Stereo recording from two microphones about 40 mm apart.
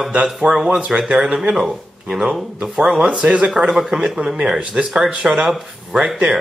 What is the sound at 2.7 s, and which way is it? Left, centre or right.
Speech, right.